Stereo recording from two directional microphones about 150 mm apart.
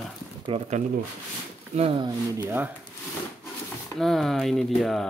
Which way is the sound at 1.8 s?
40° right (ahead or behind).